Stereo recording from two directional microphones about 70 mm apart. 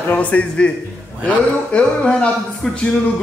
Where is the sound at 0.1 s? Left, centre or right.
Left.